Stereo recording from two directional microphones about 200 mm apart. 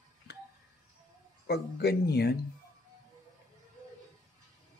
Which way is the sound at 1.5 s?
55° left (ahead or behind).